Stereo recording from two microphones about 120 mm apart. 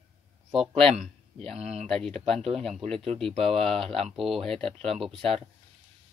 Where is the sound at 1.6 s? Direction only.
65° right (ahead or behind).